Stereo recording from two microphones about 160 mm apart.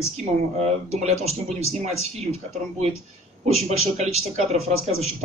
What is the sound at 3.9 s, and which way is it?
Speech, 40° right (ahead or behind).